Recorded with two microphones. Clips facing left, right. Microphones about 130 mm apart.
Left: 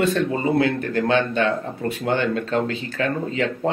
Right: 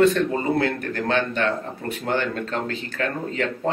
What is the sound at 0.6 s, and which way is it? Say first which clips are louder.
Speech: left 4 dB; 20° left (ahead or behind).